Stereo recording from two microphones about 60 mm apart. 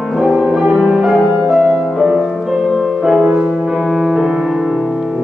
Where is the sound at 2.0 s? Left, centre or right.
Centre.